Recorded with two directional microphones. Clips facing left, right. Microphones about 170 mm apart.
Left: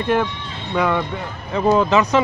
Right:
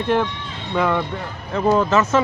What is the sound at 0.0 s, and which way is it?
Speech, 5° left (ahead or behind).